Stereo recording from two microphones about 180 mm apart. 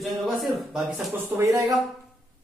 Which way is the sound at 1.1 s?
15° right (ahead or behind).